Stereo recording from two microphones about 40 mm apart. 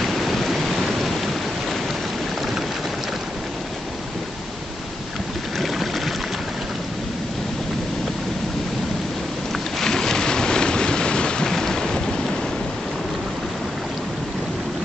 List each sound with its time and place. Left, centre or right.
0.0 s rain: centre
9.8 s boat: centre